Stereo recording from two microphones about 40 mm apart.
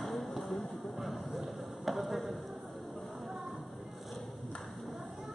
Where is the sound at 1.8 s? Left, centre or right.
Centre.